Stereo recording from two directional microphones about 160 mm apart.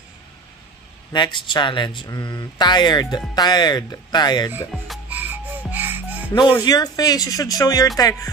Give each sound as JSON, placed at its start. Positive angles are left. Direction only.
{"t": 1.1, "sound": "speech", "side_deg": 30}
{"t": 5.1, "sound": "music", "side_deg": -10}
{"t": 6.3, "sound": "speech", "side_deg": 30}